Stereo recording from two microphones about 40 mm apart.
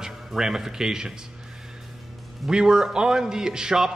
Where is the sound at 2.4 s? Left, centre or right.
Centre.